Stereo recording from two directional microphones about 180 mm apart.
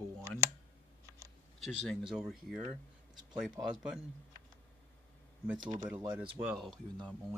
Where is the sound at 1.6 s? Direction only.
5° right (ahead or behind).